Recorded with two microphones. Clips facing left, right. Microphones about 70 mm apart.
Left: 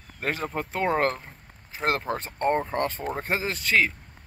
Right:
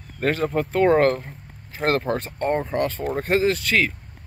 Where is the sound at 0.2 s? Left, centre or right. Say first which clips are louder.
Right 7 dB; centre.